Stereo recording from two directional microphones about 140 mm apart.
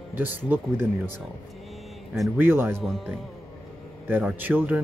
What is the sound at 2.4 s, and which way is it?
Speech, 15° right (ahead or behind).